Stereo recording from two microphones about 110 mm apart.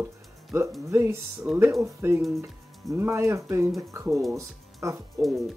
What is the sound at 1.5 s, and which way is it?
Speech, 10° right (ahead or behind).